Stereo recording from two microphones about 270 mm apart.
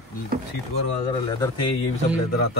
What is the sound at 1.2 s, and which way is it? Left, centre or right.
Speech, centre.